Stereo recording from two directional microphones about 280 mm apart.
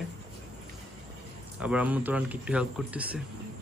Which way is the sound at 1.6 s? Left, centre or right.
Centre.